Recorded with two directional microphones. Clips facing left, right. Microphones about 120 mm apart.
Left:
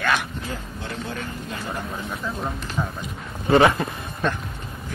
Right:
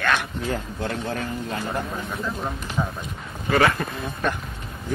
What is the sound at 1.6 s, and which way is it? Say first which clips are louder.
Speech: right 2 dB; centre (ahead or behind).